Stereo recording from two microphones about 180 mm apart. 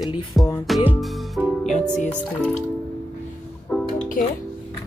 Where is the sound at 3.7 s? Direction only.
Centre (ahead or behind).